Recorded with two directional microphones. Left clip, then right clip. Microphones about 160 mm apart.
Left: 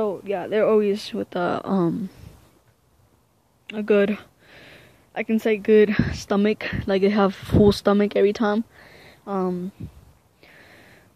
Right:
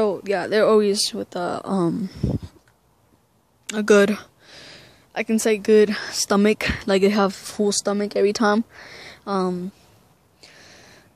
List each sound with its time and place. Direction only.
0.0 s speech: 35° right (ahead or behind)
1.1 s speech: 5° right (ahead or behind)
3.6 s speech: 35° right (ahead or behind); by 7.2 s 15° right (ahead or behind)
7.2 s speech: 5° left (ahead or behind); by 9.7 s 15° right (ahead or behind)
10.4 s a sound: 10° right (ahead or behind)